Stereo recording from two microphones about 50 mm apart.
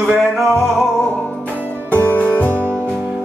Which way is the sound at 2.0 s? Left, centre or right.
Left.